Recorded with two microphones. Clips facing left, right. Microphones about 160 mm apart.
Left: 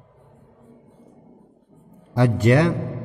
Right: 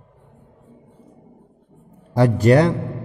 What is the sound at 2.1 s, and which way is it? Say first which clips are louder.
Speech: right 3 dB; 40° right (ahead or behind).